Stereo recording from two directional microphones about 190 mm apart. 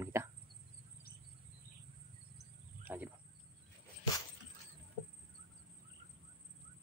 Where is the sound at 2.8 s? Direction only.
10° right (ahead or behind).